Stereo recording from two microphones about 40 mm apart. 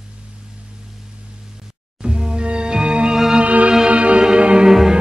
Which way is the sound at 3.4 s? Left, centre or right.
Right.